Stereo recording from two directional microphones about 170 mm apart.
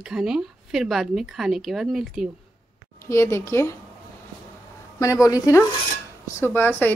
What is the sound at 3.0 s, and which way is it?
Speech, 15° left (ahead or behind).